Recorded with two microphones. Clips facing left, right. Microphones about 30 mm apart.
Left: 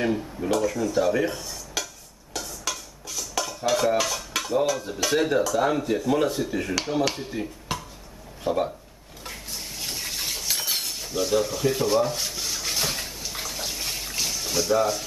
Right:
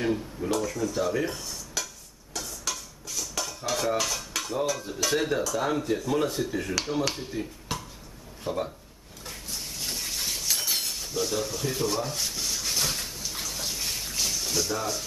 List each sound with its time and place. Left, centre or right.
0.0 s speech: centre
2.7 s dishes: centre
3.9 s speech: centre
9.3 s a sound: centre